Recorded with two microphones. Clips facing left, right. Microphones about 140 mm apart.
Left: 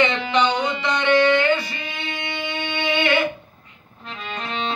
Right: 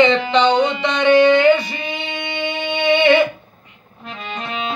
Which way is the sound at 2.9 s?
20° right (ahead or behind).